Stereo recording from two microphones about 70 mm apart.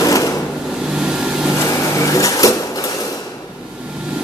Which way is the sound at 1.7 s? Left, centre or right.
Left.